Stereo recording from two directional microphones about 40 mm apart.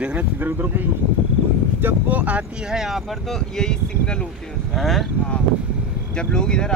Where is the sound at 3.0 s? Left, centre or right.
Centre.